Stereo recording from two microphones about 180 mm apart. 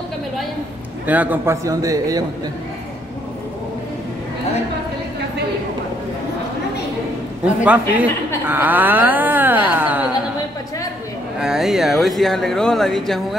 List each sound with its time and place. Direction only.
1.0 s speech: 10° right (ahead or behind)
7.4 s speech: 10° right (ahead or behind)
11.3 s speech: 5° right (ahead or behind)